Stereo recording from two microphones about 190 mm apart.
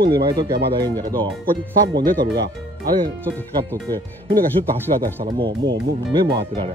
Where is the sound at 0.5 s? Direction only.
60° right (ahead or behind).